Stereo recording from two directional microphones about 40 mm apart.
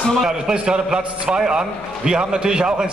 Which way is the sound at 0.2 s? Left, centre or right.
Centre.